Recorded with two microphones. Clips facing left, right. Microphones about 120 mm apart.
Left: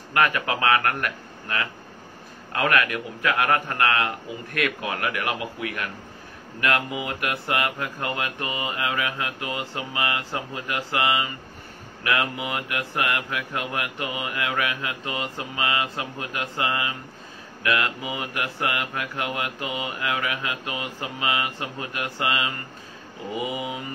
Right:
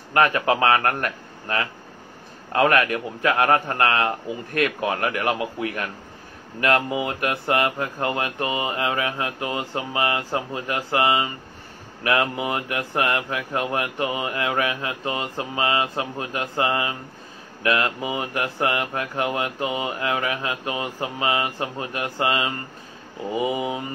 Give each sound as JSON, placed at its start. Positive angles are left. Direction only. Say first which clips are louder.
{"t": 0.1, "sound": "speech", "louder": "right 4 dB", "side_deg": -30}
{"t": 23.3, "sound": "mantra", "louder": "right 5 dB", "side_deg": -30}